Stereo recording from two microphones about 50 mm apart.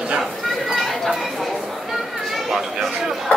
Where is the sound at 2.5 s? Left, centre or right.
Centre.